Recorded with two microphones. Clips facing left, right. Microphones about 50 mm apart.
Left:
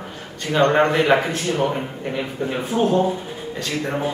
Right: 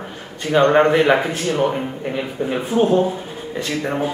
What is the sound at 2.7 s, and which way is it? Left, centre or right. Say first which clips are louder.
Speech: right 2 dB; centre.